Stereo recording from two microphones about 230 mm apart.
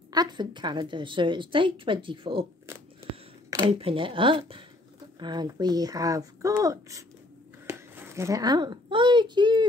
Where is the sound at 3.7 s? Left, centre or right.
Right.